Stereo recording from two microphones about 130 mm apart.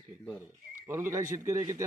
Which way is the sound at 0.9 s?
20° right (ahead or behind).